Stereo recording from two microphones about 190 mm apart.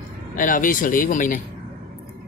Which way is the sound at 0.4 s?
45° left (ahead or behind).